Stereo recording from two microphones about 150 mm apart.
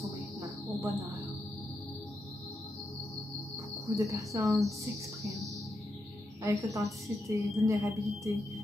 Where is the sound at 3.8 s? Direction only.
20° right (ahead or behind).